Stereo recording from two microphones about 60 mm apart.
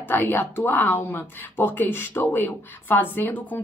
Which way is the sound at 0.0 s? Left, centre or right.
Left.